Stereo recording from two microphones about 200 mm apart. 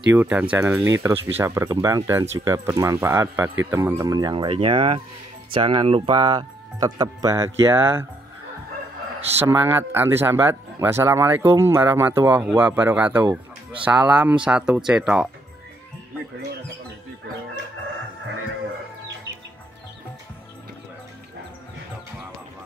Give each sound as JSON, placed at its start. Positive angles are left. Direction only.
{"t": 0.1, "sound": "speech", "side_deg": -5}
{"t": 9.4, "sound": "speech", "side_deg": -10}